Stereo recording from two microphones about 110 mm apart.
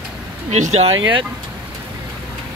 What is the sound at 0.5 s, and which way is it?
Speech, 85° right.